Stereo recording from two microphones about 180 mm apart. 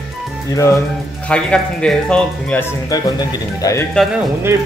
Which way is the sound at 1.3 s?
5° left (ahead or behind).